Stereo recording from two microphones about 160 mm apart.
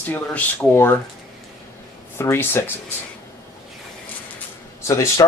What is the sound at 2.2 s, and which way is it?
Speech, 15° left (ahead or behind).